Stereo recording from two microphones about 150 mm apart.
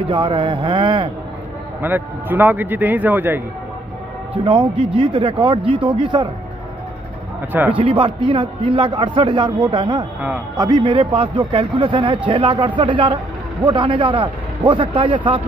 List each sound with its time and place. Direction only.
0.0 s speech: 35° right (ahead or behind)
1.8 s a man's voice: 15° right (ahead or behind)
4.5 s speech: 35° right (ahead or behind)
7.7 s speech: 35° right (ahead or behind)